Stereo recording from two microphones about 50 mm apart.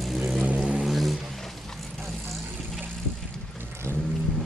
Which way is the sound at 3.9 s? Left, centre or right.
Right.